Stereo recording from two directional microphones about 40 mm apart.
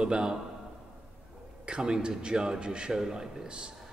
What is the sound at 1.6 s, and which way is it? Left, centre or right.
A man's voice, right.